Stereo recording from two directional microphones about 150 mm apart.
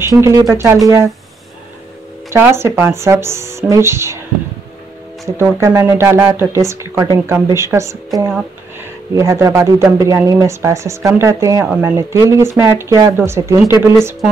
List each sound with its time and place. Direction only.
0.0 s speech: 20° right (ahead or behind)
2.3 s speech: 15° right (ahead or behind)
5.4 s speech: 15° right (ahead or behind)
9.1 s speech: 20° right (ahead or behind)